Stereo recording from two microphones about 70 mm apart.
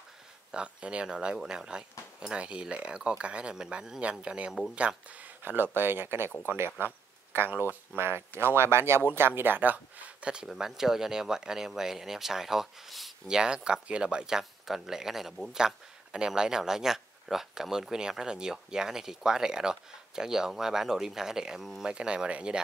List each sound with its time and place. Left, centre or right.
0.5 s speech: centre
13.4 s speech: centre